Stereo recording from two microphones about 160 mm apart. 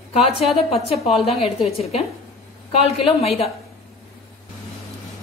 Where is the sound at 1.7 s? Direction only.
40° left (ahead or behind).